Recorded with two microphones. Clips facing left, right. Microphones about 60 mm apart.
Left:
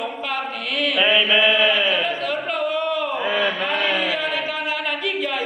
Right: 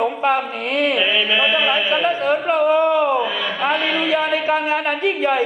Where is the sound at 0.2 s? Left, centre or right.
Right.